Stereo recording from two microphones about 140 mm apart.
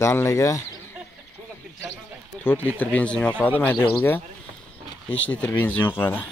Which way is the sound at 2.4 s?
15° left (ahead or behind).